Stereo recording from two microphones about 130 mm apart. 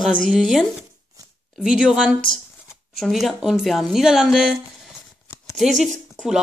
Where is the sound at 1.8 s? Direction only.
5° right (ahead or behind).